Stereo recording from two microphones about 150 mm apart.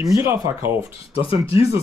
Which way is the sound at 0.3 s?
15° right (ahead or behind).